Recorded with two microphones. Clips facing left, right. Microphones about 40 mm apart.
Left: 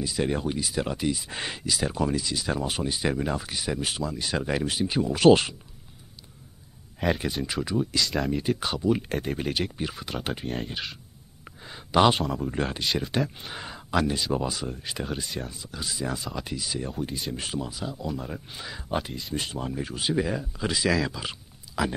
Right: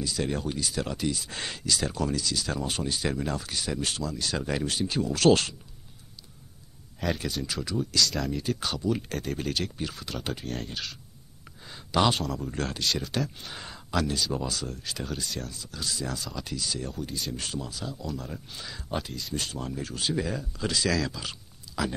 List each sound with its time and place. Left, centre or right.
0.0 s speech: centre
7.0 s speech: left